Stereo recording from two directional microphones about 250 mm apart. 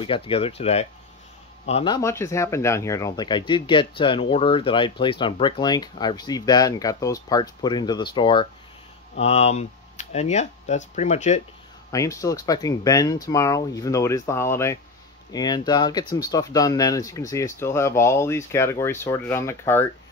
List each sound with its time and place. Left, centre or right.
0.0 s speech: left
2.0 s speech: centre; by 11.4 s left
11.9 s speech: centre